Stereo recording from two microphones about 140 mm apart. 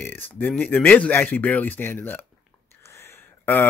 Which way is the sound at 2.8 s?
15° left (ahead or behind).